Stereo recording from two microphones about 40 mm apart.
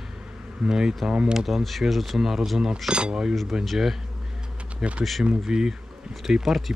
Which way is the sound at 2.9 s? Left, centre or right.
Right.